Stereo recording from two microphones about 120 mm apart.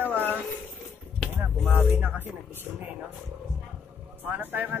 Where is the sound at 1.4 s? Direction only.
15° right (ahead or behind).